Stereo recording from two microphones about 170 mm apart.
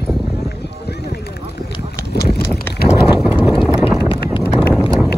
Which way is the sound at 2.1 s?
70° left (ahead or behind).